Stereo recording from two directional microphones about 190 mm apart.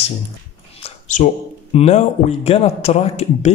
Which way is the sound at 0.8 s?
40° left (ahead or behind).